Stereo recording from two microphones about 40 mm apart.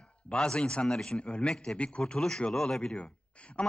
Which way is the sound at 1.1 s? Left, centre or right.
Left.